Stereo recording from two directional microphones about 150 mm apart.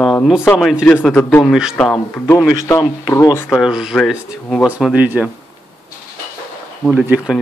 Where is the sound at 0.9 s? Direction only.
10° left (ahead or behind).